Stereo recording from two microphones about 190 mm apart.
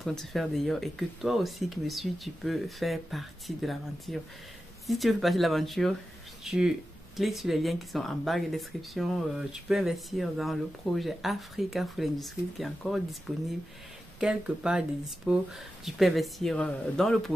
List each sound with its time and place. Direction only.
0.0 s speech: centre (ahead or behind)
14.2 s speech: 5° right (ahead or behind)